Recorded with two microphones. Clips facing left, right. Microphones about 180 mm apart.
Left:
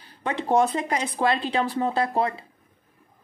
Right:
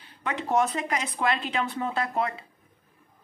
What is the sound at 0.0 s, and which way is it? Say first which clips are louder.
Speech: left 3 dB; 30° left (ahead or behind).